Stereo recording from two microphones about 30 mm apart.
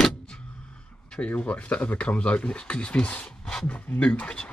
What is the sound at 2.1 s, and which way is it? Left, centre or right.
Speech, left.